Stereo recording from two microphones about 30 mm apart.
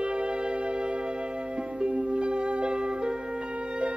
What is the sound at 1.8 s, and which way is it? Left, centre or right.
Music, right.